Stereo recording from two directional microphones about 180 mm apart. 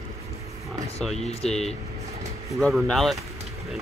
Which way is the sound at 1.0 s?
Centre (ahead or behind).